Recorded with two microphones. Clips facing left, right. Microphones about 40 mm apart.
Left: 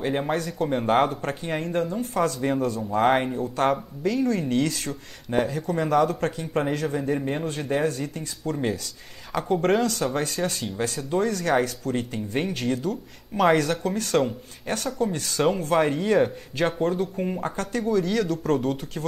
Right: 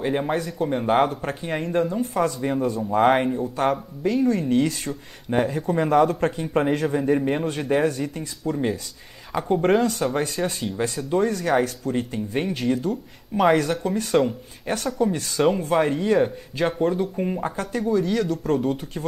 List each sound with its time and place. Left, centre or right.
0.0 s a man's voice: centre
2.1 s a man's voice: centre
2.6 s speech: centre
5.5 s speech: right
6.7 s speech: right
7.0 s a man's voice: centre